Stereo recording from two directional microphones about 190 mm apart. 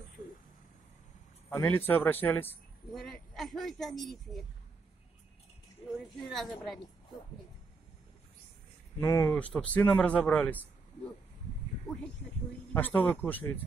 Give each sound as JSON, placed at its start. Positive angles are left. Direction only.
{"t": 1.5, "sound": "speech", "side_deg": 10}
{"t": 5.8, "sound": "speech", "side_deg": 30}
{"t": 6.1, "sound": "a woman's voice", "side_deg": 0}
{"t": 9.0, "sound": "speech", "side_deg": 15}
{"t": 12.7, "sound": "speech", "side_deg": 10}